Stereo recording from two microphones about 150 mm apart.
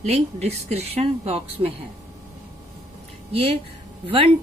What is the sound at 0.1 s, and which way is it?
Speech, 45° right (ahead or behind).